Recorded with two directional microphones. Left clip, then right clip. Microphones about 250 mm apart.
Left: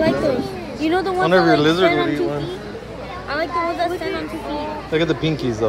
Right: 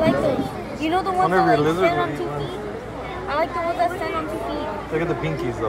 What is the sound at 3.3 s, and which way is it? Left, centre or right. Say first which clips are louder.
Speech: left 1 dB; left.